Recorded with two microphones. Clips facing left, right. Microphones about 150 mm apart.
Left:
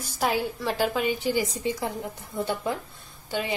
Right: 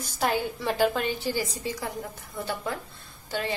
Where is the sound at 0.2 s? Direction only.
Centre (ahead or behind).